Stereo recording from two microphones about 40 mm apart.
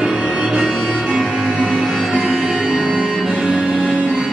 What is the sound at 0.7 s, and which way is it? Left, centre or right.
Music, centre.